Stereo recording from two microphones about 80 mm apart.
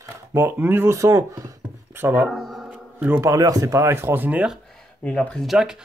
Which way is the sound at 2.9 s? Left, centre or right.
Right.